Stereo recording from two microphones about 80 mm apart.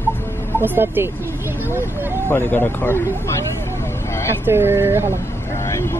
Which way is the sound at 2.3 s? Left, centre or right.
Left.